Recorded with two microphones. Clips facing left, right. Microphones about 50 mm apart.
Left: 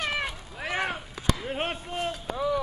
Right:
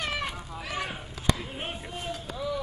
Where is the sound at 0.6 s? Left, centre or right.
Left.